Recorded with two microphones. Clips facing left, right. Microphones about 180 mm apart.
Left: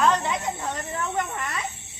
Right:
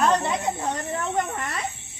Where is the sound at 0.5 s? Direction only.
30° right (ahead or behind).